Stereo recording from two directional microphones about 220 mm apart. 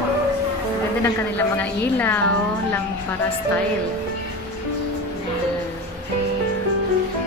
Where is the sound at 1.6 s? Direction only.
10° left (ahead or behind).